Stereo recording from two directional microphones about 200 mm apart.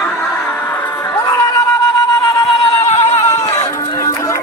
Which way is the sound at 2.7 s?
35° left (ahead or behind).